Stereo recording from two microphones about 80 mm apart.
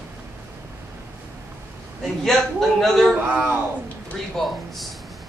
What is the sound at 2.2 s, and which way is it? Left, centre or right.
Speech, centre.